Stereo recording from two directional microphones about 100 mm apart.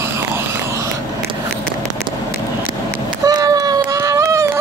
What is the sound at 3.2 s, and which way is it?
Run, 40° right (ahead or behind).